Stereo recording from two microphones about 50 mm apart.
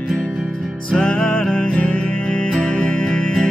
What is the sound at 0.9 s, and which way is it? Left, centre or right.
Music, centre.